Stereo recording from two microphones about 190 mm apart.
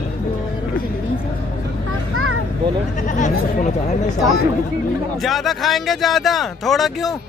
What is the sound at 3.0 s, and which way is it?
Speech, 40° left (ahead or behind).